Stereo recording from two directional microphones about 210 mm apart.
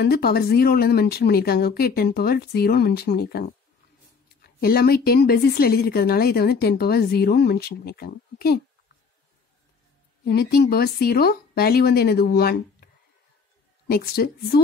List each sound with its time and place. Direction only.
0.0 s a woman's voice: 50° left (ahead or behind)
10.2 s a woman's voice: 50° left (ahead or behind)
13.8 s a woman's voice: 45° left (ahead or behind)